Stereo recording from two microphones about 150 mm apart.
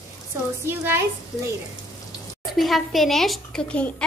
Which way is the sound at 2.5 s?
Centre (ahead or behind).